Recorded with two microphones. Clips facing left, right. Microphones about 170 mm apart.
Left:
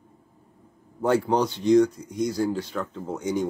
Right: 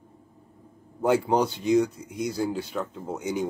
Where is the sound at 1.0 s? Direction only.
10° right (ahead or behind).